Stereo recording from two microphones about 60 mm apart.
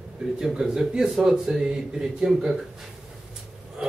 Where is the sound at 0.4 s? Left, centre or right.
Centre.